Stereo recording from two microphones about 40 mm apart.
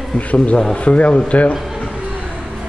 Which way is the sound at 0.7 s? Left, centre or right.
Left.